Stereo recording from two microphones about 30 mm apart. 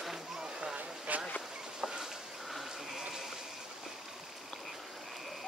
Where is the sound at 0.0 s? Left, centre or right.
Centre.